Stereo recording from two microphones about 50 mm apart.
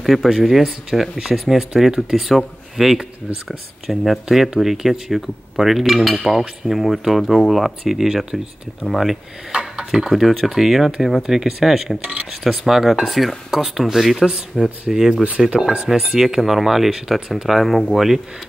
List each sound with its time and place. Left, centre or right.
0.0 s speech: centre
9.5 s a sound: centre
9.8 s speech: centre
12.0 s speech: right
12.3 s speech: centre